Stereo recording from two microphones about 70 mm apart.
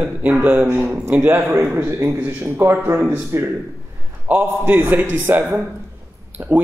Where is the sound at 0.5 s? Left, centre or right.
Right.